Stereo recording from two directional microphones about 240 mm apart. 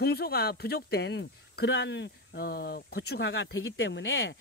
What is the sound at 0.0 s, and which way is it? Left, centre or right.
Speech, left.